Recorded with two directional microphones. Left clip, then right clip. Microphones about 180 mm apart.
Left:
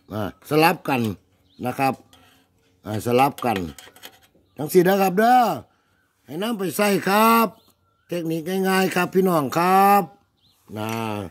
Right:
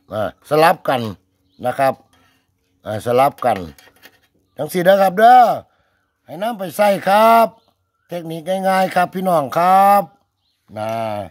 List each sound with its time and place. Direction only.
0.1 s speech: 35° right (ahead or behind)
2.8 s a sound: 40° right (ahead or behind)
10.7 s speech: 40° right (ahead or behind)